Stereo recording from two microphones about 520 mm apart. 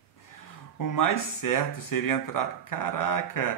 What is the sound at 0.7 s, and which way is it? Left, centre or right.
Speech, left.